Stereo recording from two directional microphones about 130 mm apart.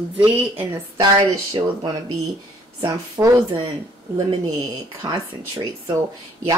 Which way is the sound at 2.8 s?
25° right (ahead or behind).